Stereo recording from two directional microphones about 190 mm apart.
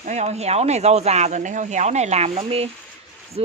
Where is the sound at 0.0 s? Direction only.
35° right (ahead or behind).